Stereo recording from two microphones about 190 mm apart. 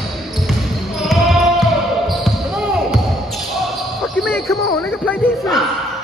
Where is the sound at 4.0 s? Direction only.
Centre (ahead or behind).